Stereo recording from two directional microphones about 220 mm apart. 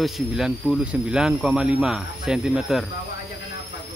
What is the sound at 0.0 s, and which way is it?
Speech, centre (ahead or behind).